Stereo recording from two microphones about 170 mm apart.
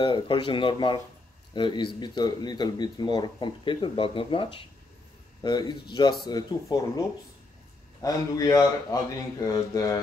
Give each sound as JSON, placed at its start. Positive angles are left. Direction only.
{"t": 0.0, "sound": "speech", "side_deg": 30}